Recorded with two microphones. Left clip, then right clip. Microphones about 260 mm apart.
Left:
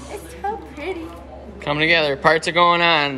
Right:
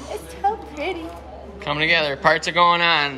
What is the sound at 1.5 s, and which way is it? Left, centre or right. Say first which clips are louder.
Speech: left 2 dB; centre.